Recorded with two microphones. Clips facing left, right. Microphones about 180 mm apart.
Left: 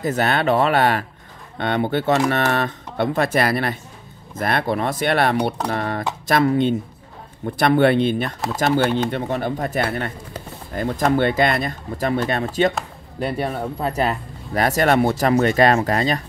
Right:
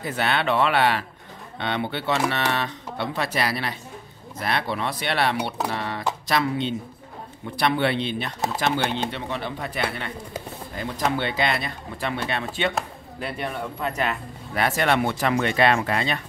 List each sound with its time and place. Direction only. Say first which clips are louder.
0.0 s speech: left 5 dB; 45° left (ahead or behind)